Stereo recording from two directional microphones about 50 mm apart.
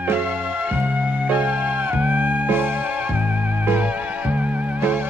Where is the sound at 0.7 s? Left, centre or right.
Right.